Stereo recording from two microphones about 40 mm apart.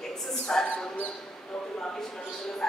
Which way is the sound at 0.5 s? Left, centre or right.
Centre.